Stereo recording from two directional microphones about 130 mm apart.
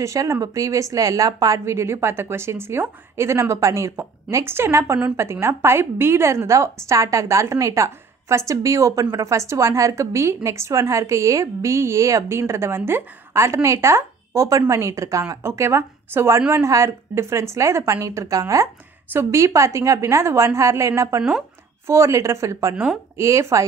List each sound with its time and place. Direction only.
0.0 s a woman's voice: 25° right (ahead or behind)